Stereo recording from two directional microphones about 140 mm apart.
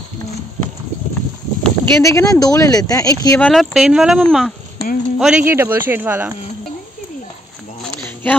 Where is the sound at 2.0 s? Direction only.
20° left (ahead or behind).